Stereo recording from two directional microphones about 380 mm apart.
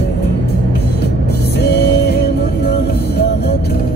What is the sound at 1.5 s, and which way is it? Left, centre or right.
Music, left.